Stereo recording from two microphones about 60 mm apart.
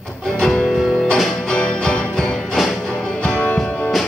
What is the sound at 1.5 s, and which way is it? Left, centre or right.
Music, centre.